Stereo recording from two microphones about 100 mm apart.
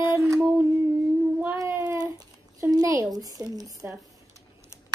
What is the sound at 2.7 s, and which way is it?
A woman's voice, 35° right (ahead or behind).